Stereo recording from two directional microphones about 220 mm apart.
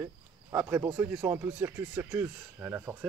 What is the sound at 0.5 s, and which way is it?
Speech, 15° right (ahead or behind).